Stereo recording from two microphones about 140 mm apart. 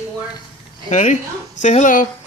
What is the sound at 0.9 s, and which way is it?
Speech, 60° left (ahead or behind).